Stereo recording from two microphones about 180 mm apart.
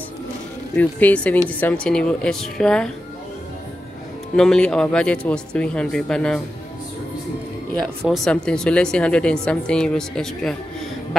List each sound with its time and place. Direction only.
0.7 s speech: 10° left (ahead or behind)
4.4 s speech: 5° left (ahead or behind)
8.0 s speech: centre (ahead or behind)